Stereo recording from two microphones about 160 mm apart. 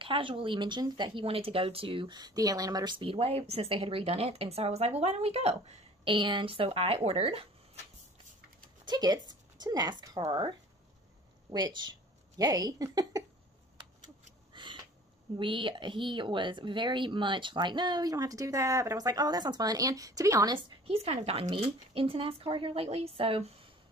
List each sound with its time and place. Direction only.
0.0 s speech: 30° right (ahead or behind)
6.0 s speech: 30° right (ahead or behind)
8.8 s a woman's voice: 25° right (ahead or behind)
11.5 s speech: 25° right (ahead or behind)
14.5 s a sound: 30° right (ahead or behind)
15.3 s speech: 30° right (ahead or behind)
20.5 s speech: 35° right (ahead or behind)